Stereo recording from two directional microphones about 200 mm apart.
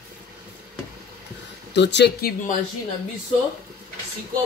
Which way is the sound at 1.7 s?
60° left (ahead or behind).